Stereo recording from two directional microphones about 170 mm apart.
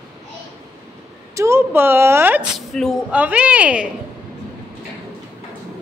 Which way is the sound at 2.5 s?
Centre (ahead or behind).